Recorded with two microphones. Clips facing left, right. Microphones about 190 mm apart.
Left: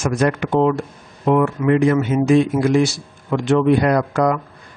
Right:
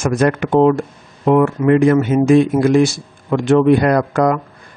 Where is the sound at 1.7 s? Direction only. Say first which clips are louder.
Right 4 dB; 55° right (ahead or behind).